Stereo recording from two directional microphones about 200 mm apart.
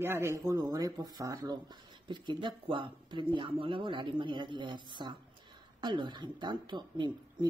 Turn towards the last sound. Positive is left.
turn(degrees=-20)  # may be behind; listen again after turning